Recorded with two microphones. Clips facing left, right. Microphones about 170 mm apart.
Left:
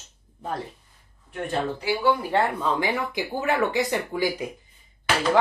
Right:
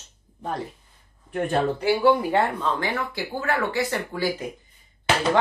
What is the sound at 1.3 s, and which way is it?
Speech, 55° right (ahead or behind).